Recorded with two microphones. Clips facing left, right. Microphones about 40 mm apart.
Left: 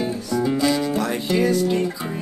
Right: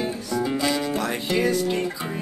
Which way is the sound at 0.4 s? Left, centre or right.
Right.